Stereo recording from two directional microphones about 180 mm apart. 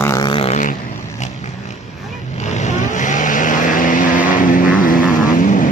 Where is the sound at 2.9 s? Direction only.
45° left (ahead or behind).